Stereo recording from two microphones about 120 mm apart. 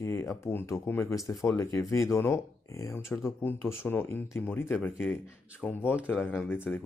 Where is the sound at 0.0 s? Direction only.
20° left (ahead or behind).